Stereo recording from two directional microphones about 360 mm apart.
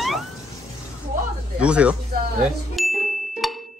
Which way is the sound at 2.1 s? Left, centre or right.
Right.